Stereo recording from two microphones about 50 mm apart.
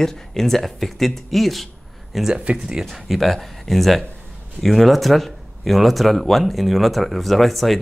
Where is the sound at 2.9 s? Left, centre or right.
Centre.